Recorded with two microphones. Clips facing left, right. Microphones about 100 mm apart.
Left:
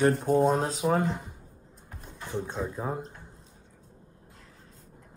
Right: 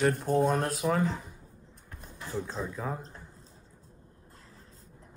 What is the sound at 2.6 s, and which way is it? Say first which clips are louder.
Speech: left 3 dB; 20° left (ahead or behind).